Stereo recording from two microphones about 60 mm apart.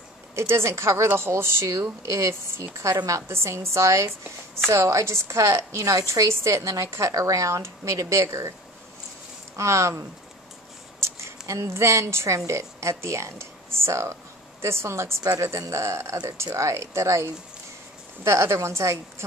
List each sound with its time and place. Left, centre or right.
0.4 s a woman's voice: right
9.6 s a woman's voice: right